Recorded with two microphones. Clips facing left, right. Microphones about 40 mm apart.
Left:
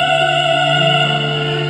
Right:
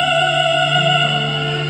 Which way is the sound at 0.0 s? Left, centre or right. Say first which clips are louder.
Left 1 dB; centre.